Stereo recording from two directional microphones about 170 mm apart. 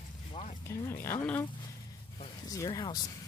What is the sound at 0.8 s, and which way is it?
Speech, 15° left (ahead or behind).